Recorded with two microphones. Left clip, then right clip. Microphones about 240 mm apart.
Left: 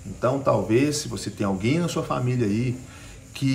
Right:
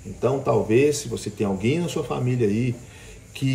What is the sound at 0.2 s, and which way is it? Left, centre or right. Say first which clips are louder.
Speech: even; centre.